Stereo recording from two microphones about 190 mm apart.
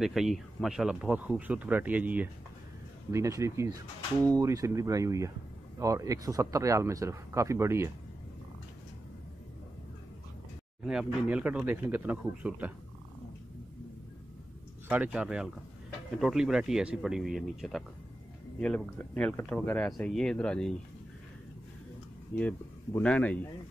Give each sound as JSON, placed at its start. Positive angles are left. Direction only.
{"t": 0.0, "sound": "speech", "side_deg": 0}
{"t": 10.8, "sound": "speech", "side_deg": -5}
{"t": 14.9, "sound": "speech", "side_deg": -5}
{"t": 22.3, "sound": "speech", "side_deg": 5}